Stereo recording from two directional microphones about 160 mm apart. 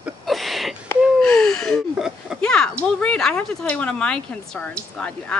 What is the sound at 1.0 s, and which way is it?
Speech, 5° left (ahead or behind).